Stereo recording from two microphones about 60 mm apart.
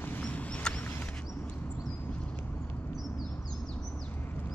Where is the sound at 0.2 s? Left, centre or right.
Left.